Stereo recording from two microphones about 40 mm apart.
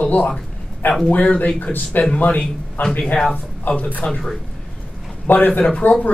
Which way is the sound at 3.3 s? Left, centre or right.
Left.